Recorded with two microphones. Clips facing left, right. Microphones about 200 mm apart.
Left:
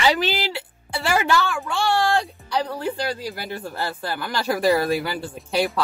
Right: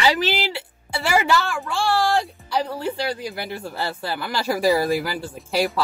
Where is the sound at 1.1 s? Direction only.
5° right (ahead or behind).